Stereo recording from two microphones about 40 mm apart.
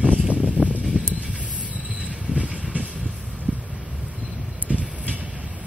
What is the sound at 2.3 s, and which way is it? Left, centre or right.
Train, right.